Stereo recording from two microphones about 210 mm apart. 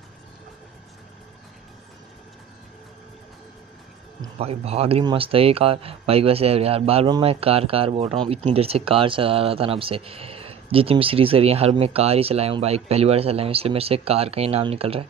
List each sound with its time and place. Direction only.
4.4 s speech: 30° right (ahead or behind)